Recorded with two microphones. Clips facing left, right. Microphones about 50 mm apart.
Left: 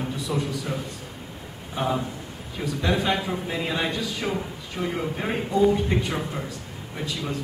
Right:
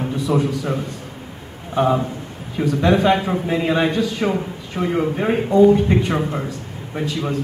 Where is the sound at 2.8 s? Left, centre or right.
Right.